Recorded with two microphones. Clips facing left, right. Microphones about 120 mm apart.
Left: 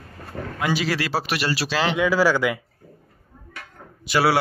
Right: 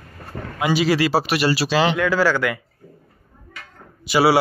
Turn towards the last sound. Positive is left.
turn(degrees=-5)  # may be behind; listen again after turning